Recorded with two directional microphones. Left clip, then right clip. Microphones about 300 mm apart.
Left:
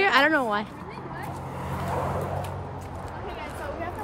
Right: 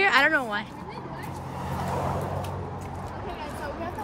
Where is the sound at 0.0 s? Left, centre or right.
Centre.